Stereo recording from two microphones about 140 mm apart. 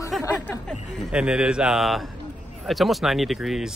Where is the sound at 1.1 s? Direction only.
5° right (ahead or behind).